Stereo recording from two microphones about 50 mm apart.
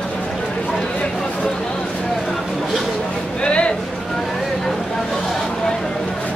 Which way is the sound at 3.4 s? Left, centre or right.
Left.